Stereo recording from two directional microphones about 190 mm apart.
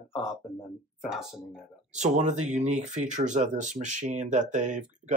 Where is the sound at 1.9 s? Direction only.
40° right (ahead or behind).